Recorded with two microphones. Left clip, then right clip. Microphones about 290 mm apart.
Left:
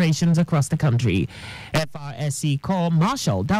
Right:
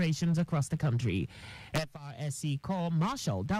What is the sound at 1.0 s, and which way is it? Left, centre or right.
Speech, left.